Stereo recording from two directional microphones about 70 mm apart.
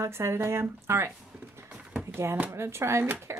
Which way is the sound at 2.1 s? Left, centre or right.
Right.